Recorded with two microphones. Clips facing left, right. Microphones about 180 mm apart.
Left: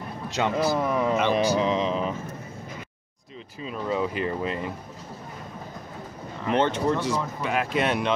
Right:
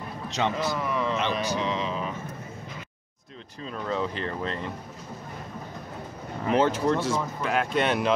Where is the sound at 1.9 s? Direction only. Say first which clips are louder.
Left 5 dB; 35° left (ahead or behind).